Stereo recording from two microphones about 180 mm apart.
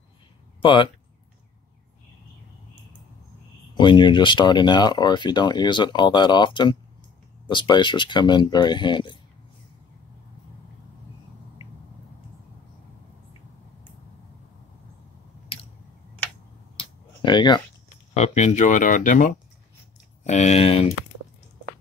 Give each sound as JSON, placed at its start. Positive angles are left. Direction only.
{"t": 0.6, "sound": "speech", "side_deg": 25}
{"t": 3.7, "sound": "speech", "side_deg": 25}
{"t": 16.7, "sound": "a sound", "side_deg": 25}
{"t": 18.1, "sound": "speech", "side_deg": 40}